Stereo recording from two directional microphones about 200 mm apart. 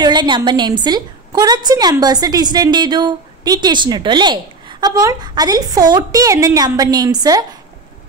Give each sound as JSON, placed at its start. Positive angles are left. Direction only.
{"t": 0.0, "sound": "a woman's voice", "side_deg": -20}